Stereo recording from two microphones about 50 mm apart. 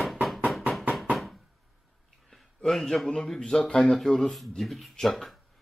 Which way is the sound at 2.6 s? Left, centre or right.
Centre.